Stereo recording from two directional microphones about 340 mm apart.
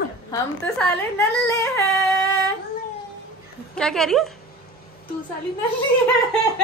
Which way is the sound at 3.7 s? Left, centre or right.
Centre.